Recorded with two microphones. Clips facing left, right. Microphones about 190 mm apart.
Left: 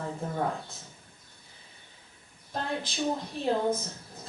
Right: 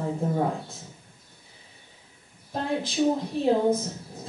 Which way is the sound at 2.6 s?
5° right (ahead or behind).